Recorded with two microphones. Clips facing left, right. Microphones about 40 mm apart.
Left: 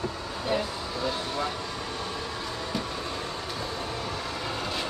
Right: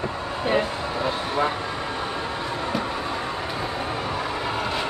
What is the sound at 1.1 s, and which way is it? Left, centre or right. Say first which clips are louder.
Vehicle: right 6 dB; right.